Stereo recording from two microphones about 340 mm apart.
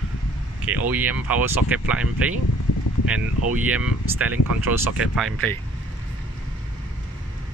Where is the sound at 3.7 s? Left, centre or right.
Centre.